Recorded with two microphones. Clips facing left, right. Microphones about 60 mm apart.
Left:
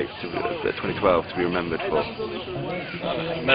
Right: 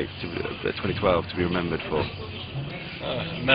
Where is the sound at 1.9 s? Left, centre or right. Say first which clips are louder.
Left 3 dB; left.